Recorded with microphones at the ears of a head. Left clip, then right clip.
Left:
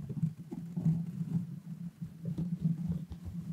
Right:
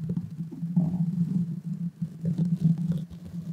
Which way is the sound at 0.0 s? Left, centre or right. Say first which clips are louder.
Right 6 dB; right.